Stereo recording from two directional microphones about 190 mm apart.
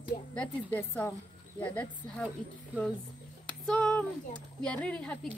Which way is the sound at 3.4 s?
5° left (ahead or behind).